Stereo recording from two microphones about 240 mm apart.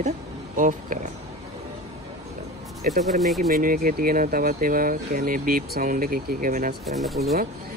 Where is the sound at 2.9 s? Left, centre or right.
Centre.